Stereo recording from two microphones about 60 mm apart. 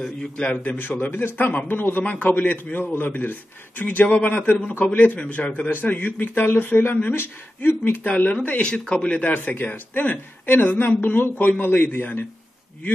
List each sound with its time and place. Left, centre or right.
0.4 s speech: left
0.7 s a man's voice: left